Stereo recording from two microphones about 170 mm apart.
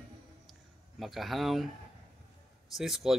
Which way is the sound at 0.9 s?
Centre (ahead or behind).